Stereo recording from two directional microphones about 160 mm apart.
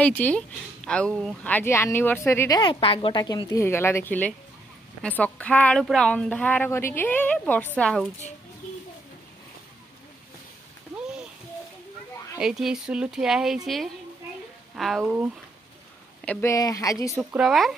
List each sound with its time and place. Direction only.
0.0 s a woman's voice: 10° left (ahead or behind)
2.6 s a woman's voice: 35° left (ahead or behind); by 8.0 s 10° left (ahead or behind)
12.4 s speech: 5° right (ahead or behind)
14.8 s speech: centre (ahead or behind)
16.3 s a woman's voice: 10° left (ahead or behind)
16.5 s a woman's voice: 20° left (ahead or behind)
17.3 s speech: centre (ahead or behind)